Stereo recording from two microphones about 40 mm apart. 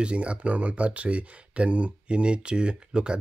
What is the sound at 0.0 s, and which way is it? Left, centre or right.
Speech, right.